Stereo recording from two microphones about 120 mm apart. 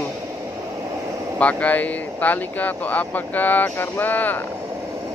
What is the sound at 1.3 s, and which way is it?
Speech, 10° left (ahead or behind).